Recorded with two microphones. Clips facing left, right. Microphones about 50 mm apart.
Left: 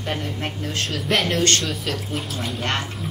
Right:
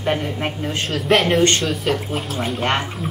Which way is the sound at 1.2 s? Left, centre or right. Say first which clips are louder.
Right 4 dB; centre.